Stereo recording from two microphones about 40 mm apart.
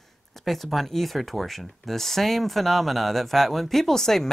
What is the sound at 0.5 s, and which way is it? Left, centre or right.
Speech, centre.